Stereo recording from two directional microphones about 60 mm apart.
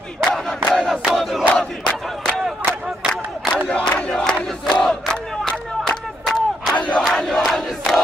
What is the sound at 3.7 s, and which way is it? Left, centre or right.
Crowd, centre.